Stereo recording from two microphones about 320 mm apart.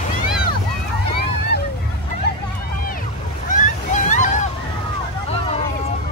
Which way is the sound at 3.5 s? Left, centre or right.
Left.